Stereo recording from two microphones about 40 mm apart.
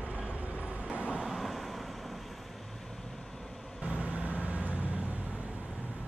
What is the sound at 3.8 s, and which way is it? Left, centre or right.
Vehicle, right.